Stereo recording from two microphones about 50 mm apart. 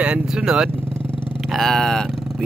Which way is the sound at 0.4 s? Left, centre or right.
Centre.